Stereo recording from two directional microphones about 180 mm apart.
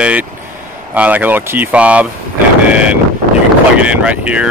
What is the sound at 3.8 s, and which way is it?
Speech, 5° right (ahead or behind).